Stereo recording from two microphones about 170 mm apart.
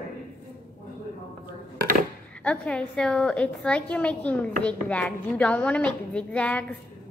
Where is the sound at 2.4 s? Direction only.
5° left (ahead or behind).